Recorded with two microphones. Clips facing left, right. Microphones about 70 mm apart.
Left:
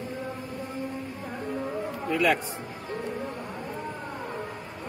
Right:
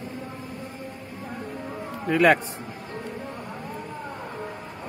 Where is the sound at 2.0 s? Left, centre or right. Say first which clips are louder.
Right 6 dB; right.